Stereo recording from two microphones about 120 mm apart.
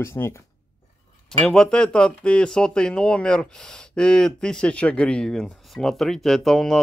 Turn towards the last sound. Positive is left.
turn(degrees=0)  # may be behind; listen again after turning